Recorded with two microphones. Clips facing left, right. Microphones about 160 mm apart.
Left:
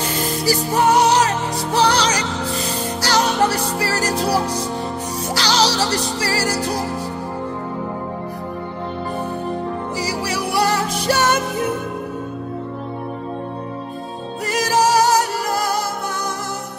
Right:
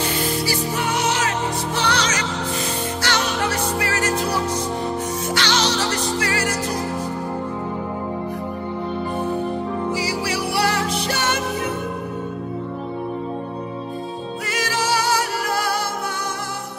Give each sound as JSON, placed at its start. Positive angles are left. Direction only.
{"t": 0.2, "sound": "music", "side_deg": 40}
{"t": 9.9, "sound": "music", "side_deg": 45}
{"t": 14.5, "sound": "music", "side_deg": 40}